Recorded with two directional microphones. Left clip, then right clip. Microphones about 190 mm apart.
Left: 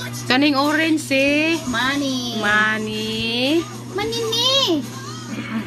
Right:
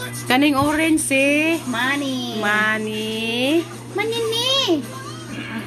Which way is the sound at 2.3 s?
5° right (ahead or behind).